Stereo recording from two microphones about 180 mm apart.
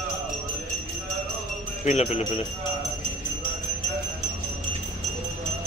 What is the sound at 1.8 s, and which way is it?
Speech, 40° left (ahead or behind).